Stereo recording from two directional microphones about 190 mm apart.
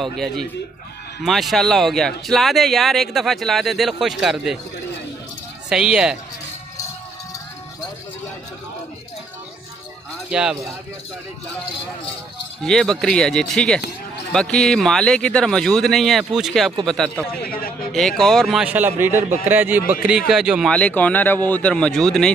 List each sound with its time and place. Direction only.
0.0 s speech: centre (ahead or behind)
5.7 s speech: 5° right (ahead or behind)
10.3 s speech: 5° right (ahead or behind)
12.6 s speech: centre (ahead or behind)
17.4 s a man's voice: 50° left (ahead or behind)
17.9 s speech: centre (ahead or behind)
20.7 s speech: 5° left (ahead or behind)